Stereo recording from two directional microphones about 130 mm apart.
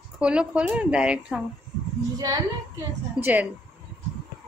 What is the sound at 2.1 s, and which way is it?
Speech, 25° right (ahead or behind).